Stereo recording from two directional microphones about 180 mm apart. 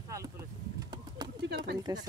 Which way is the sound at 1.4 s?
70° right (ahead or behind).